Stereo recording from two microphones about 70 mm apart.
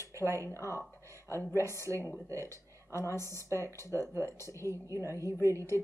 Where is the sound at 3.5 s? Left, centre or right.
Left.